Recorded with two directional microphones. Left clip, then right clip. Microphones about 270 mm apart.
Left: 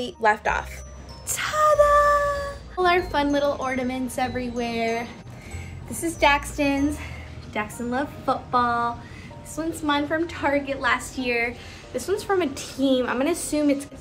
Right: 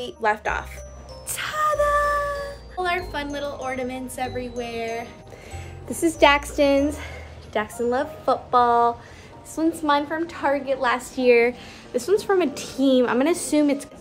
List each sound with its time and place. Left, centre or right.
0.0 s speech: centre
1.3 s music: centre
2.8 s speech: centre
5.9 s a woman's voice: right
9.6 s a woman's voice: centre; by 13.8 s right